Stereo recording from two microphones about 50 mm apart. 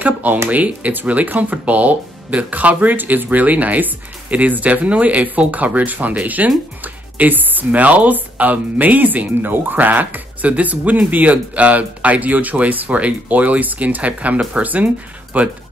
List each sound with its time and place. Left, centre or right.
0.0 s speech: right